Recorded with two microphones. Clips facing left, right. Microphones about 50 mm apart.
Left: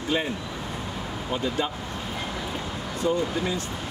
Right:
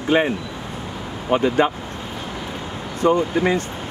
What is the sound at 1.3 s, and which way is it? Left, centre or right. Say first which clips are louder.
Speech: right 10 dB; right.